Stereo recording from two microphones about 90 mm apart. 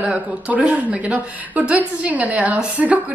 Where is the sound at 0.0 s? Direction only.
15° right (ahead or behind).